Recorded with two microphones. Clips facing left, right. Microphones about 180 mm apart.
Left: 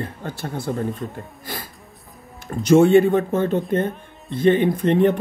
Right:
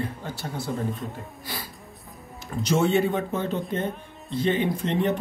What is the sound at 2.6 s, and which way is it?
Speech, 50° left (ahead or behind).